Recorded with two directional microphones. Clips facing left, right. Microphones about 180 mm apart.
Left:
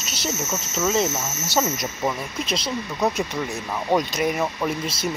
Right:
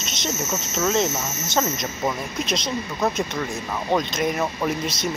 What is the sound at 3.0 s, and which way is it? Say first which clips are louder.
Speech: left 1 dB; 15° left (ahead or behind).